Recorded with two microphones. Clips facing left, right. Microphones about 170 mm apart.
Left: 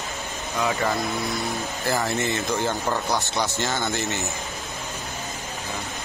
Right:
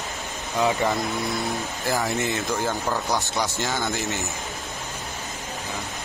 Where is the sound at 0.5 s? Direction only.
20° right (ahead or behind).